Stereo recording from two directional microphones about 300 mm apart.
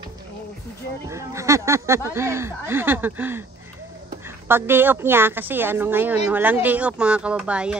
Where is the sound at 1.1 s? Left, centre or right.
Centre.